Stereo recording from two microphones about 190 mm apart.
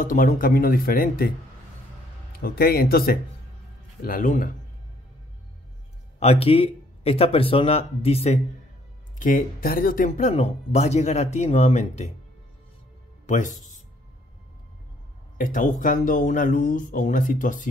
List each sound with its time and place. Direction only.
0.0 s speech: 45° left (ahead or behind)
2.4 s speech: 50° left (ahead or behind)
6.1 s speech: 30° left (ahead or behind)
9.2 s speech: 45° left (ahead or behind)
13.3 s speech: 40° left (ahead or behind)
15.3 s speech: 45° left (ahead or behind)